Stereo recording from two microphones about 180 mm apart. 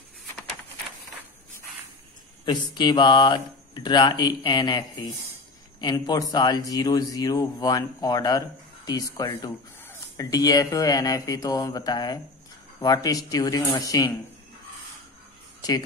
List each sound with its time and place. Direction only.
2.4 s speech: 25° left (ahead or behind)
15.6 s speech: 20° left (ahead or behind)